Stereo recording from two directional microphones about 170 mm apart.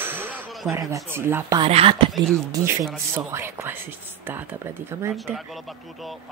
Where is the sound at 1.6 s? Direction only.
35° right (ahead or behind).